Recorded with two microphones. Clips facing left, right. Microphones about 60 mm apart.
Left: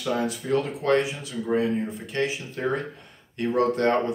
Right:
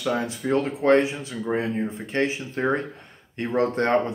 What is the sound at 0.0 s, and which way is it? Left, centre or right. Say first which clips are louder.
Speech: right 1 dB; right.